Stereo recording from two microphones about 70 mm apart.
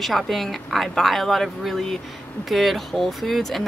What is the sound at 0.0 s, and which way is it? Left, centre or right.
Speech, centre.